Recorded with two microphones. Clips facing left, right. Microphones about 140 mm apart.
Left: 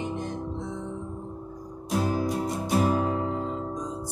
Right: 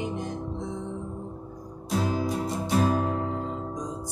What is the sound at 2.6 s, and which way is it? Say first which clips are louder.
Music: even; 10° left (ahead or behind).